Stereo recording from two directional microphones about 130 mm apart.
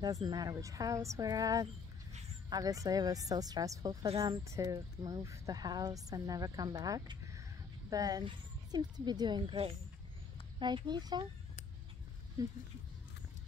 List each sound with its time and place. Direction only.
0.0 s speech: 30° right (ahead or behind)